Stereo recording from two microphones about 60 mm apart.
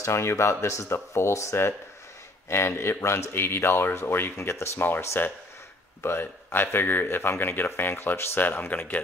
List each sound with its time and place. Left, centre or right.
0.0 s speech: left
4.7 s speech: left